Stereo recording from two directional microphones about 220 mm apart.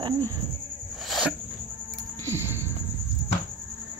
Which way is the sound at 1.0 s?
Centre (ahead or behind).